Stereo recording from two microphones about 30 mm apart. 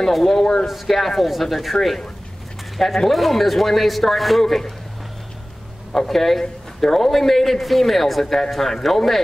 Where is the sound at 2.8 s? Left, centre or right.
Centre.